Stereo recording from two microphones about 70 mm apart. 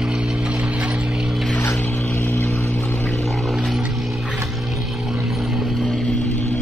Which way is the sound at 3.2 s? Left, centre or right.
Centre.